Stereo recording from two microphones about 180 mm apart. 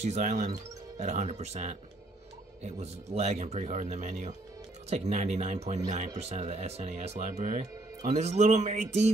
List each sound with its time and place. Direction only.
0.0 s speech: 40° right (ahead or behind)